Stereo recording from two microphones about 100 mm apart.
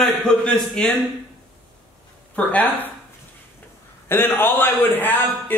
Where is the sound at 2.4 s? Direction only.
15° left (ahead or behind).